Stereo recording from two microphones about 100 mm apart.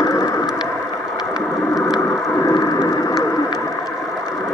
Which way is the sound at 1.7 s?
5° right (ahead or behind).